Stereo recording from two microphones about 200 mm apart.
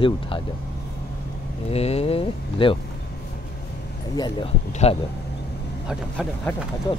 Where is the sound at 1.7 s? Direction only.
30° left (ahead or behind).